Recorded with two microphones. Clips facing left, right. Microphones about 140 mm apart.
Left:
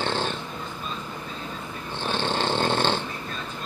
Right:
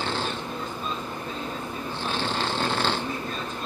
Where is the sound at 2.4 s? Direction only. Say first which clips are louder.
Left 4 dB; 25° left (ahead or behind).